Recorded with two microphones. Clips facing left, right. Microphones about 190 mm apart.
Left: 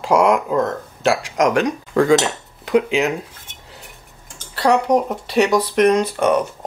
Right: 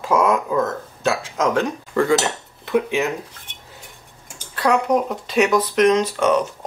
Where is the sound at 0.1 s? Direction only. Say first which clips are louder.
Left 3 dB; 15° left (ahead or behind).